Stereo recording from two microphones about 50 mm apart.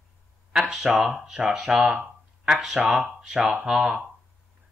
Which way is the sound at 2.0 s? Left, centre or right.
Centre.